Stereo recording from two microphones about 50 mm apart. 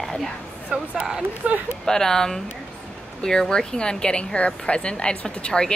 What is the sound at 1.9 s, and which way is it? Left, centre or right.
A woman's voice, centre.